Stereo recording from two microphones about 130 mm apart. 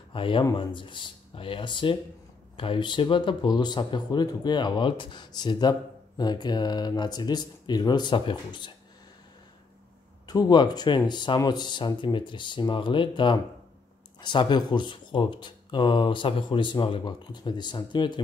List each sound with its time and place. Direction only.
0.1 s speech: 40° left (ahead or behind)
10.2 s speech: 35° left (ahead or behind)